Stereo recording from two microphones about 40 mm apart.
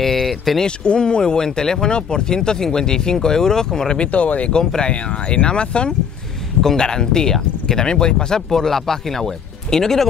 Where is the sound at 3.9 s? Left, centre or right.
Left.